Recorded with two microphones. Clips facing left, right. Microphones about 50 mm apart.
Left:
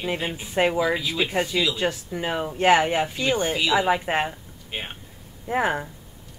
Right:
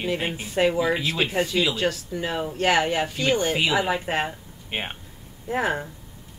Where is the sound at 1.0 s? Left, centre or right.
Right.